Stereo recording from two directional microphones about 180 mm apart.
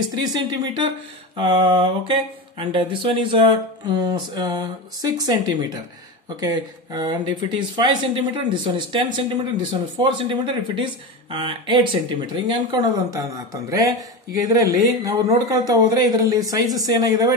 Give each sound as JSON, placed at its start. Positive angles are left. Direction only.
{"t": 0.1, "sound": "speech", "side_deg": -20}